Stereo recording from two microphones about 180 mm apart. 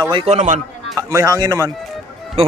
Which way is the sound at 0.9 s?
20° right (ahead or behind).